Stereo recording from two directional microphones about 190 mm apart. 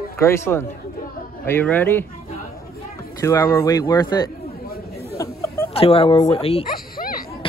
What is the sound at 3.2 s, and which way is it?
Speech, 15° left (ahead or behind).